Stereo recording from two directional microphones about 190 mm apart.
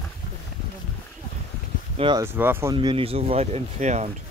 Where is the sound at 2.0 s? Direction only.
25° right (ahead or behind).